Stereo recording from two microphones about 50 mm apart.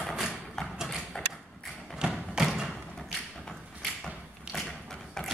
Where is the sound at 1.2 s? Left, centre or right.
Centre.